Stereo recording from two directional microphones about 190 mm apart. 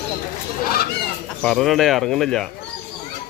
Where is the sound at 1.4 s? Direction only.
Centre (ahead or behind).